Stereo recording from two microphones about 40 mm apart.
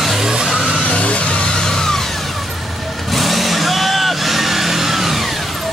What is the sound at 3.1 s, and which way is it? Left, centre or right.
Vehicle, centre.